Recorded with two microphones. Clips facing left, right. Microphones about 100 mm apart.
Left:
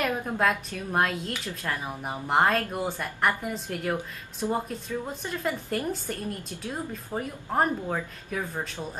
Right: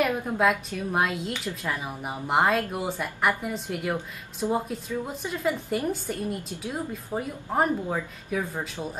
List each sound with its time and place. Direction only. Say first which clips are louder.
0.0 s speech: right 2 dB; 5° right (ahead or behind)